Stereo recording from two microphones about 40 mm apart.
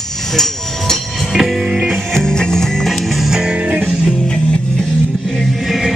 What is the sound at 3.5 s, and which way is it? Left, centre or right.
Music, right.